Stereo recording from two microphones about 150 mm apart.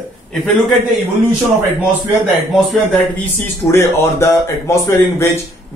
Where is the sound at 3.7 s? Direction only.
20° left (ahead or behind).